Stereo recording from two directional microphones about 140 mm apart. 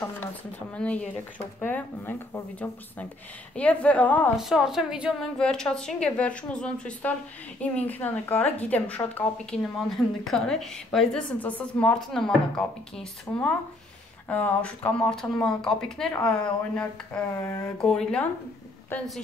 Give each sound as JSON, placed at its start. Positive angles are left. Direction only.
{"t": 0.7, "sound": "a woman's voice", "side_deg": 10}
{"t": 4.4, "sound": "a woman's voice", "side_deg": -5}
{"t": 5.4, "sound": "a woman's voice", "side_deg": 5}
{"t": 13.3, "sound": "a woman's voice", "side_deg": 15}